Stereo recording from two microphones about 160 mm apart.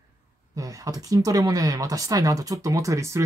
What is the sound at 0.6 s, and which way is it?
Speech, 20° right (ahead or behind).